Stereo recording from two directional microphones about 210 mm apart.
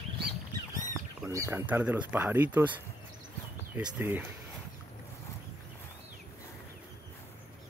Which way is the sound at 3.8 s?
10° right (ahead or behind).